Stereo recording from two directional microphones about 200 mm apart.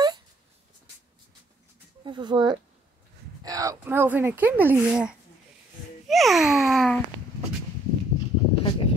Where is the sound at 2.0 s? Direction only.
25° right (ahead or behind); by 5.1 s 5° right (ahead or behind).